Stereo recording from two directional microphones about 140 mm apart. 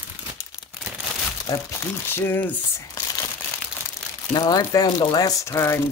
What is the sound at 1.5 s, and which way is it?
Speech, 25° left (ahead or behind).